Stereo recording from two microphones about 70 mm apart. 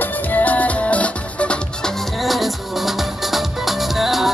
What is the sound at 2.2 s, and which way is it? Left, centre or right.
Music, centre.